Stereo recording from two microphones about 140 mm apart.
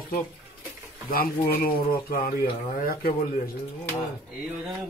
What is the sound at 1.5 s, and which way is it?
Speech, 90° left.